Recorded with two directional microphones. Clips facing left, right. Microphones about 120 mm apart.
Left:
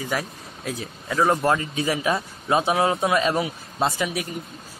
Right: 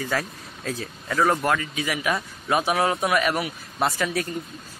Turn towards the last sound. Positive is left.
turn(degrees=15)  # may be behind; listen again after turning